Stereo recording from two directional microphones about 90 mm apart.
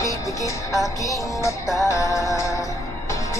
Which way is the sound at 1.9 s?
35° left (ahead or behind).